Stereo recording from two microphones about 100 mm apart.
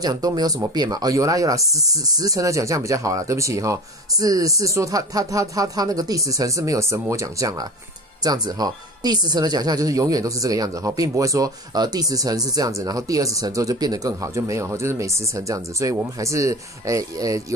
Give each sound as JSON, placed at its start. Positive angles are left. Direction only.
{"t": 0.0, "sound": "speech", "side_deg": -40}